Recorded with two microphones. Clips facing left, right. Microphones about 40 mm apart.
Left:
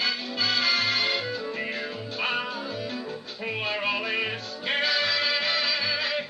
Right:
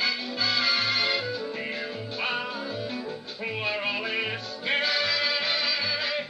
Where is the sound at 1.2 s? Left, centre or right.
Left.